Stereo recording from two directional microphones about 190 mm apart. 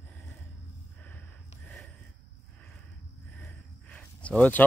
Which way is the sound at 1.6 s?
5° left (ahead or behind).